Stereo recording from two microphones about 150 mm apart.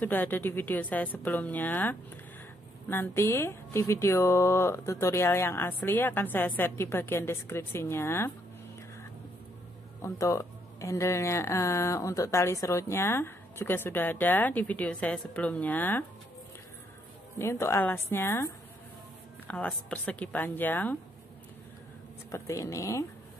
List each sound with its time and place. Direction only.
0.0 s speech: 10° left (ahead or behind)
10.0 s speech: 20° left (ahead or behind)
17.4 s speech: 15° left (ahead or behind)
22.3 s speech: 20° left (ahead or behind)